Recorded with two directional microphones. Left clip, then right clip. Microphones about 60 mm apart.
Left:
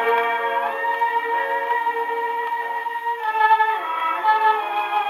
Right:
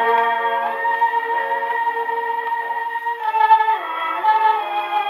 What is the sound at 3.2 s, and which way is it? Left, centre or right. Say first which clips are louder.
Music: right 3 dB; right.